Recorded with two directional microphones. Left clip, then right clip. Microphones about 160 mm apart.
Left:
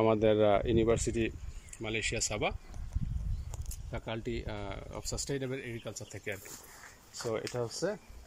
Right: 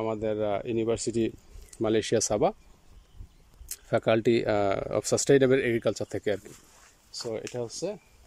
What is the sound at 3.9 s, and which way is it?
Speech, 90° right.